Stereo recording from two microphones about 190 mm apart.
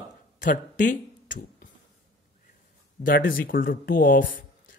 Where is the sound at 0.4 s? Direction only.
45° left (ahead or behind).